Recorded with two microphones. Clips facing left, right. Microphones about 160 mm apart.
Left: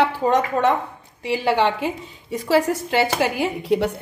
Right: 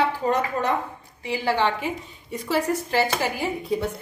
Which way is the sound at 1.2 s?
70° left (ahead or behind).